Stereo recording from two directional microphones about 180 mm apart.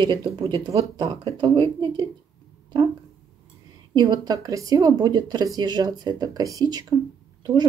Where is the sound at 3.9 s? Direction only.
25° right (ahead or behind).